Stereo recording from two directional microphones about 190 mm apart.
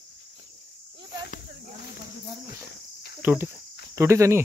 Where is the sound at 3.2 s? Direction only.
10° right (ahead or behind).